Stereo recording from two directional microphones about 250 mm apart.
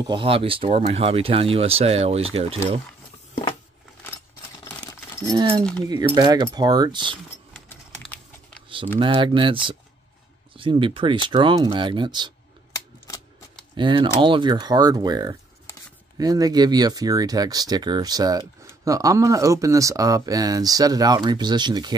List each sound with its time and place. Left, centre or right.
0.0 s speech: centre
5.2 s speech: centre
7.5 s a sound: centre
8.6 s typing: right
9.0 s speech: centre
12.7 s camera: centre
13.7 s speech: centre